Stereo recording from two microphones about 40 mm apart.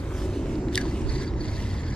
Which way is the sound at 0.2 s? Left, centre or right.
Centre.